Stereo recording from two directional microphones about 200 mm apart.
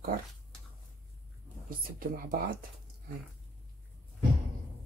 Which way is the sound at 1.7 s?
45° right (ahead or behind).